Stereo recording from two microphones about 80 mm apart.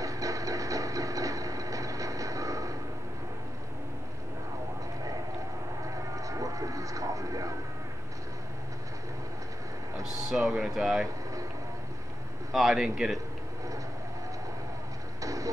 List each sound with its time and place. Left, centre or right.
0.0 s vehicle: right
6.1 s vehicle: right
10.3 s speech: centre
12.5 s a man's voice: centre
15.2 s music: right